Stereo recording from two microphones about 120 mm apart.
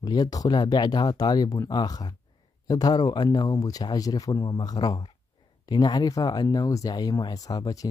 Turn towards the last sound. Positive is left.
turn(degrees=30)  # may be behind; listen again after turning